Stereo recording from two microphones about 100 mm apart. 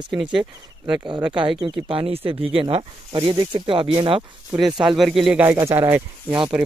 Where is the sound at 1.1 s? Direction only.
50° right (ahead or behind); by 2.8 s 70° right (ahead or behind).